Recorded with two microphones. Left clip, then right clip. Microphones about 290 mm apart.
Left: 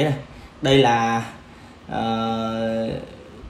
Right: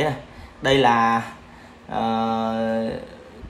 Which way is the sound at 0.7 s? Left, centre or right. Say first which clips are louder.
Even; right.